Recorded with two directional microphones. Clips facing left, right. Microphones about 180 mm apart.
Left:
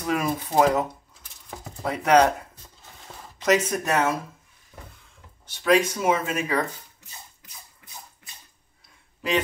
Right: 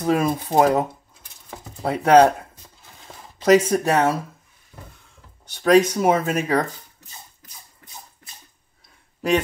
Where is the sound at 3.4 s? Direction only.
30° right (ahead or behind).